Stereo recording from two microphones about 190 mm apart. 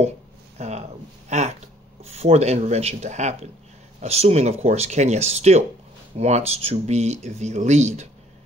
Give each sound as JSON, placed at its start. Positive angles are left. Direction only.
{"t": 0.6, "sound": "speech", "side_deg": -35}